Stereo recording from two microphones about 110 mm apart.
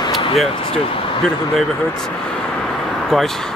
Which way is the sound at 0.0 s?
50° left (ahead or behind).